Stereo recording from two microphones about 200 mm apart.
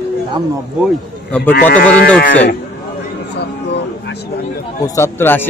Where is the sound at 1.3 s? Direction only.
5° left (ahead or behind).